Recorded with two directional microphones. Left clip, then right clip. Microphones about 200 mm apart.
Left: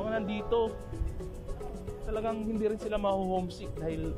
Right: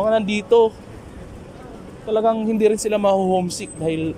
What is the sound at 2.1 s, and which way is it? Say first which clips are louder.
Speech: right 15 dB; 40° right (ahead or behind).